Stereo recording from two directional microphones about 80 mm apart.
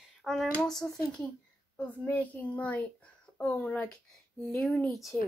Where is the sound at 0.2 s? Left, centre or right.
Centre.